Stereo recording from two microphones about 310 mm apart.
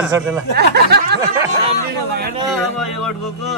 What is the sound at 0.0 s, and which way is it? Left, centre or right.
Speech, centre.